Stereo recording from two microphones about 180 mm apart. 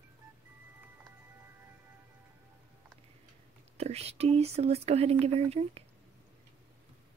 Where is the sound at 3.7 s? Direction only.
35° right (ahead or behind).